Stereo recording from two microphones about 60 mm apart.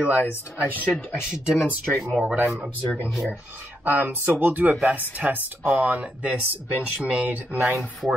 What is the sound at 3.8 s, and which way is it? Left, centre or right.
Speech, right.